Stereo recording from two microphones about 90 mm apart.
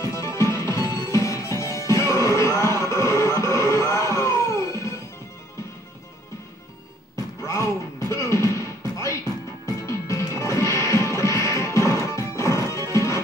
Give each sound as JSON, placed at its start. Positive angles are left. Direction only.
{"t": 0.0, "sound": "music", "side_deg": 35}
{"t": 7.4, "sound": "music", "side_deg": 35}